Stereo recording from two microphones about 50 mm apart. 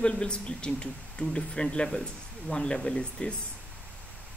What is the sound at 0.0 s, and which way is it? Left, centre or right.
Speech, centre.